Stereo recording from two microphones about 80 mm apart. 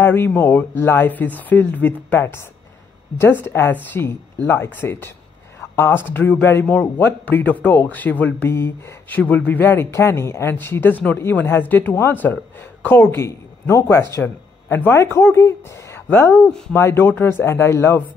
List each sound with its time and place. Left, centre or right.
0.0 s speech: left
11.9 s speech: left
12.2 s speech: left